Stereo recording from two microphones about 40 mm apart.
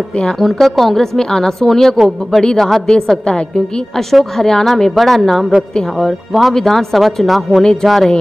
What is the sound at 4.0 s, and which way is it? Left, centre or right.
A woman's voice, centre.